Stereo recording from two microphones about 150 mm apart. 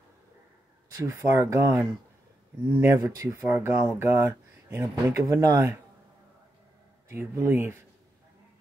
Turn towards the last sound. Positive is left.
turn(degrees=-15)  # may be behind; listen again after turning